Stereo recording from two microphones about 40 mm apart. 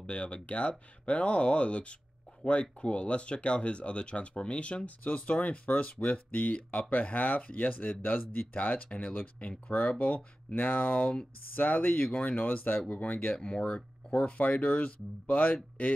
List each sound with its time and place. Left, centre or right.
0.0 s speech: left
13.4 s speech: left
13.7 s speech: left